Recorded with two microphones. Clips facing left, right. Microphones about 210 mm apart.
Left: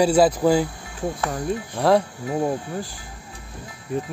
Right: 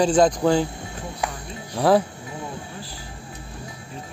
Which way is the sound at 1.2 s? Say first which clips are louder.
Left 11 dB; 45° left (ahead or behind).